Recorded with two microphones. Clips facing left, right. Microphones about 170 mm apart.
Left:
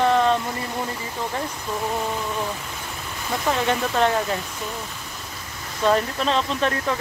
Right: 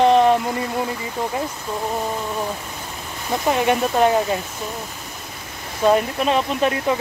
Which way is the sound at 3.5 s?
15° right (ahead or behind).